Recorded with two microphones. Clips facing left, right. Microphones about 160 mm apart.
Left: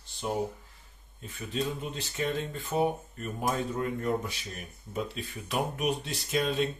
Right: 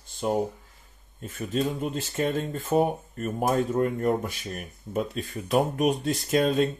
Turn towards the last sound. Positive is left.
turn(degrees=-45)  # may be behind; listen again after turning